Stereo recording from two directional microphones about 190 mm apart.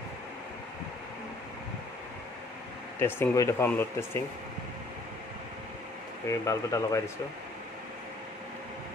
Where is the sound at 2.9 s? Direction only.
10° left (ahead or behind).